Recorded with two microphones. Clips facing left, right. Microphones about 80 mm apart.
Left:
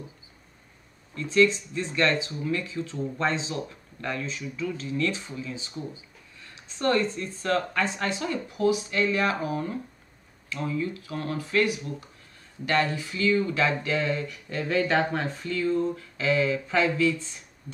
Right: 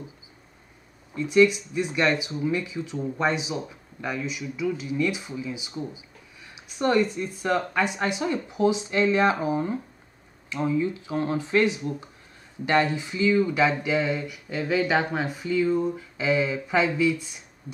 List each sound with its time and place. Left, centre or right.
1.1 s speech: centre